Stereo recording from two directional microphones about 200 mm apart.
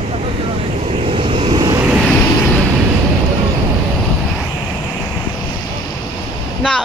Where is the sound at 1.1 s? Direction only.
25° right (ahead or behind).